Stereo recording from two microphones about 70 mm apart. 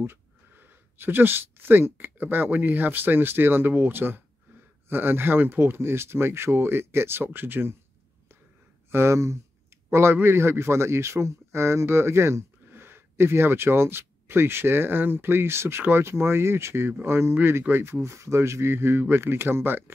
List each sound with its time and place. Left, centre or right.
0.0 s speech: right
8.9 s a man's voice: right